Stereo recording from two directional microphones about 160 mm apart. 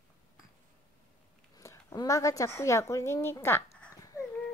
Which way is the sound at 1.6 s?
20° left (ahead or behind).